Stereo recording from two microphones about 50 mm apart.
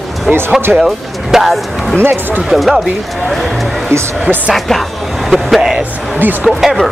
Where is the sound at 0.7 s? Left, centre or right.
Centre.